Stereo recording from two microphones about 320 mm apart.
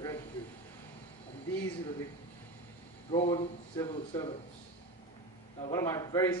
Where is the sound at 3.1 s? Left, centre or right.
Centre.